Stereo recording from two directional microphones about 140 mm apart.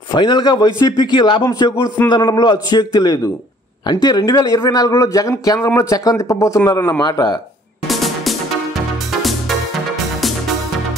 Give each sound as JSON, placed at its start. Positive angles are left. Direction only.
{"t": 0.1, "sound": "a man's voice", "side_deg": 35}
{"t": 7.9, "sound": "music", "side_deg": 0}